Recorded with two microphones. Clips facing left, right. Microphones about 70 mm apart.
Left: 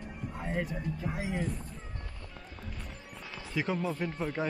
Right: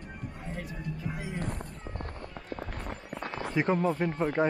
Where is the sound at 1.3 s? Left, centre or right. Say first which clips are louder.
Left 1 dB; right.